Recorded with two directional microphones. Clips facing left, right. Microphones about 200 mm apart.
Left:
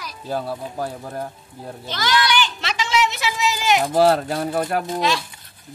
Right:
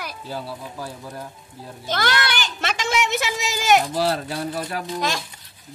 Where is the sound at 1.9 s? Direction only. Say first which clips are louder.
Left 2 dB; 50° right (ahead or behind).